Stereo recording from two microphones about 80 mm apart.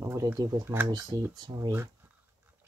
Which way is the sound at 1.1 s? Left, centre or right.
Right.